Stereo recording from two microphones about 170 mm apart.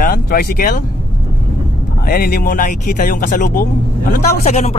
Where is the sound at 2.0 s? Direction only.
60° left (ahead or behind); by 4.7 s 45° left (ahead or behind).